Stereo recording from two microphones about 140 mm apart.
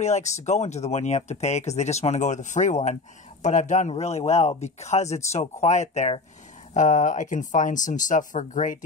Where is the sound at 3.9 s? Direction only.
50° left (ahead or behind).